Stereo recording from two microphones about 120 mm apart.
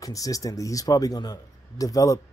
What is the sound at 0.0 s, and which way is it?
Speech, 30° left (ahead or behind).